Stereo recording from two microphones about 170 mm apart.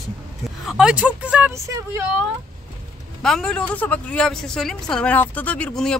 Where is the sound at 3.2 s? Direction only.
5° left (ahead or behind).